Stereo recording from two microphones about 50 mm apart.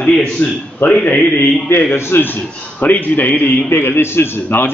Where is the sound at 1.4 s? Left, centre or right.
Left.